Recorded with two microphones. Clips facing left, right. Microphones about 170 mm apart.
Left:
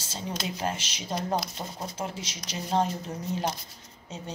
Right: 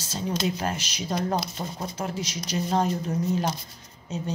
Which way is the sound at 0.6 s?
25° left (ahead or behind).